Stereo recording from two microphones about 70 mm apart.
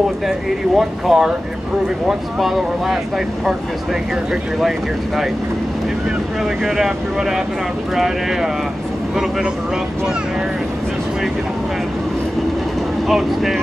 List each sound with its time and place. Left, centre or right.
0.7 s speech: centre
4.6 s speech: centre
6.6 s speech: centre
13.1 s speech: centre